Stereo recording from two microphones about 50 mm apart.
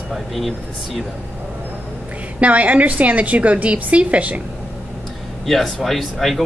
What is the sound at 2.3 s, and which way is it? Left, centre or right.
A woman's voice, right.